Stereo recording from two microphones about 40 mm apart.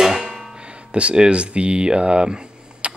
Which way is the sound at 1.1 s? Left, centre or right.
Right.